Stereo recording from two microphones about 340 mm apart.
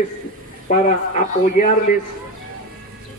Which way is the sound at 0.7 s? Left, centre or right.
Left.